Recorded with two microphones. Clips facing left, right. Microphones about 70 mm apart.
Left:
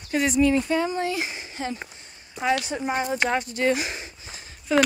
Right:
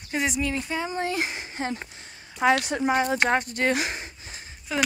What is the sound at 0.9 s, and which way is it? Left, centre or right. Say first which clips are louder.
Speech: left 1 dB; right.